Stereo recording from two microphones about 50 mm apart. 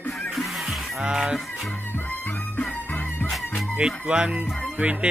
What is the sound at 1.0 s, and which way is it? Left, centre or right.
Honk, centre.